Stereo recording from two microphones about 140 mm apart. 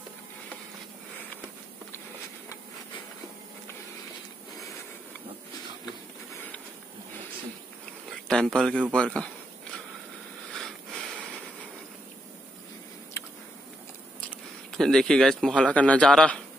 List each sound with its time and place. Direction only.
8.3 s speech: 5° left (ahead or behind)
13.2 s a sound: 20° left (ahead or behind)
14.2 s speech: 5° left (ahead or behind)